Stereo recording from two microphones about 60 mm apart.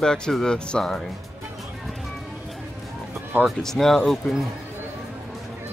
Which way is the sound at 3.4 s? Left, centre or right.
Centre.